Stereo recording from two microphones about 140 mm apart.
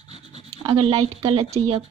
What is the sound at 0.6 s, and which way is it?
Speech, 40° right (ahead or behind).